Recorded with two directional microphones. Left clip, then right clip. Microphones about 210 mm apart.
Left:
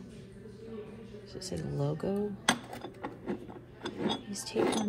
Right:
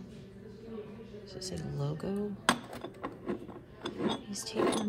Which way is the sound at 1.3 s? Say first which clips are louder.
Left 3 dB; 10° right (ahead or behind).